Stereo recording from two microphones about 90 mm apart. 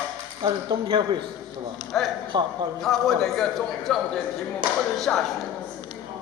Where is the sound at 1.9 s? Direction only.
5° left (ahead or behind).